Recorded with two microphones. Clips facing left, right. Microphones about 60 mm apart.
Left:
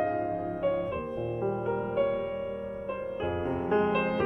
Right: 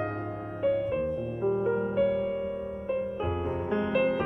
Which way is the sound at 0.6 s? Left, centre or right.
Centre.